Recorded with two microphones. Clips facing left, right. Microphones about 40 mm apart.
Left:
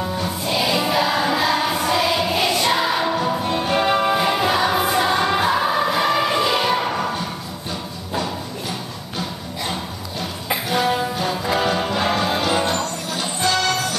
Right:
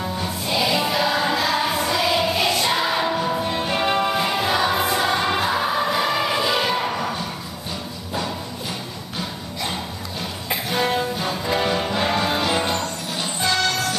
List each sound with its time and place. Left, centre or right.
0.2 s music: centre
11.1 s music: centre